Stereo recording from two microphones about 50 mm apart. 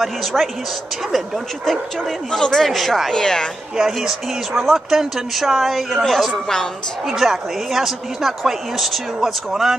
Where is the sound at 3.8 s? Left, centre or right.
Centre.